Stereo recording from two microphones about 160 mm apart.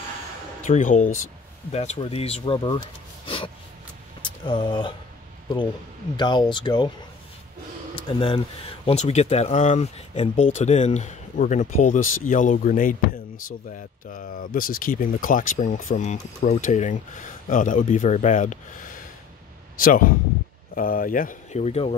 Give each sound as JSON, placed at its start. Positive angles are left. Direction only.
{"t": 0.6, "sound": "speech", "side_deg": 55}
{"t": 1.7, "sound": "speech", "side_deg": 40}
{"t": 4.2, "sound": "speech", "side_deg": 30}
{"t": 6.1, "sound": "speech", "side_deg": 30}
{"t": 7.9, "sound": "speech", "side_deg": 35}